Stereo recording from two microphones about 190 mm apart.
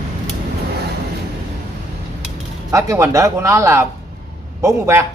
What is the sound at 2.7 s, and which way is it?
Speech, 15° right (ahead or behind).